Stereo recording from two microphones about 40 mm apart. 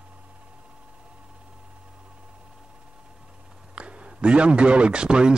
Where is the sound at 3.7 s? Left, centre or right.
Right.